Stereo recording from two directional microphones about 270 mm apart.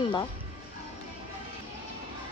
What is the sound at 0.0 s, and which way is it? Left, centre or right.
Music, centre.